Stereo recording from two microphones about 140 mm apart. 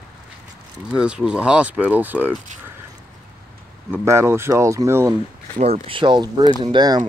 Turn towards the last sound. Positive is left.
turn(degrees=-30)  # may be behind; listen again after turning